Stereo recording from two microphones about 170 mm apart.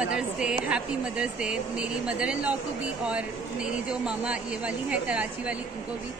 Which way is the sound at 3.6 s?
5° right (ahead or behind).